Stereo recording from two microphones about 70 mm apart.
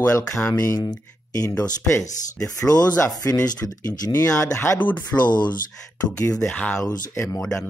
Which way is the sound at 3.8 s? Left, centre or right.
Left.